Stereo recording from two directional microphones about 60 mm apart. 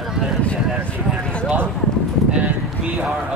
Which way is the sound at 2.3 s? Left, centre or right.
Right.